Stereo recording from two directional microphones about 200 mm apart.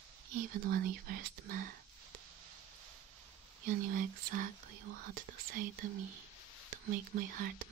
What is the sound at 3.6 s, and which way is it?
Speech, 45° right (ahead or behind).